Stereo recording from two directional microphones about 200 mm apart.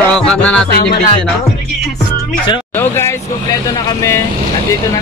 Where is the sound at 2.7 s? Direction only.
10° left (ahead or behind).